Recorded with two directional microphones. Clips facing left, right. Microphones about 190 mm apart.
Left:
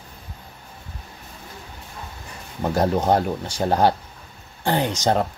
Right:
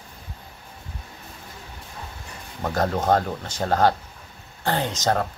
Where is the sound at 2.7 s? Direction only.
15° left (ahead or behind).